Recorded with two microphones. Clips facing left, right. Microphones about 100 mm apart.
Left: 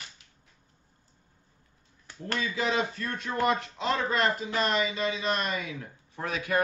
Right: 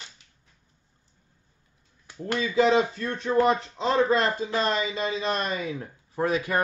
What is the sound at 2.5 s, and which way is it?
Speech, 35° right (ahead or behind).